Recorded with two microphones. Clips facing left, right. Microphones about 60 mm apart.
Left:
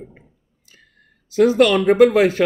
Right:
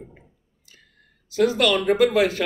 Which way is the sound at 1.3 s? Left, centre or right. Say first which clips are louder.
Left 6 dB; left.